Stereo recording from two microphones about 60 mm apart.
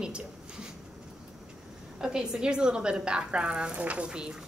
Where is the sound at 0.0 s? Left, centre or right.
Centre.